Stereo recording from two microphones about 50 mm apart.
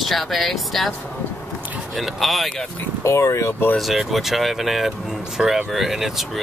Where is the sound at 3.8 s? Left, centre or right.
Centre.